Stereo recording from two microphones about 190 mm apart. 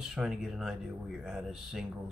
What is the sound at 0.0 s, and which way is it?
Speech, 5° right (ahead or behind).